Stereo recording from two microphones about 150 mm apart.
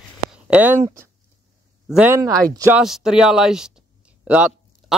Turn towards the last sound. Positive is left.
turn(degrees=-5)  # may be behind; listen again after turning